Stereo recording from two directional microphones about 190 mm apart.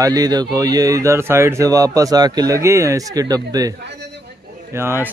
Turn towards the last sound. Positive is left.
turn(degrees=-10)  # may be behind; listen again after turning